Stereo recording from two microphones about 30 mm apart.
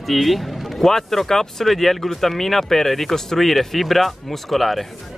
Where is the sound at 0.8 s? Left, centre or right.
Centre.